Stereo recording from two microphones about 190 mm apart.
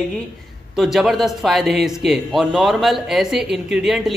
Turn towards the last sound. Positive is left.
turn(degrees=0)  # may be behind; listen again after turning